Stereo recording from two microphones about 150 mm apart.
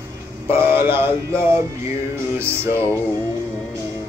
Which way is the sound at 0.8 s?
15° right (ahead or behind).